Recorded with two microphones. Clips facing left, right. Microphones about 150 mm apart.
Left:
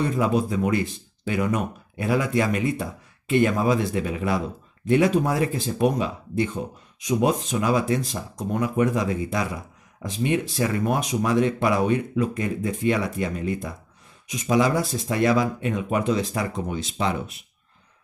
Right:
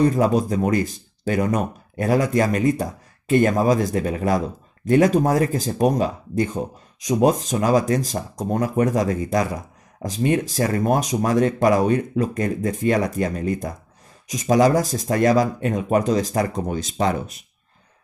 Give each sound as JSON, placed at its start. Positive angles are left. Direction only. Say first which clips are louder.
{"t": 0.0, "sound": "speech", "louder": "right 5 dB", "side_deg": -40}